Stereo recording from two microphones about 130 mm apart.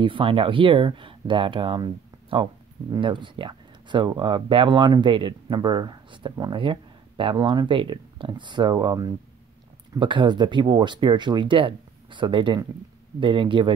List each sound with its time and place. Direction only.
0.0 s speech: 40° right (ahead or behind)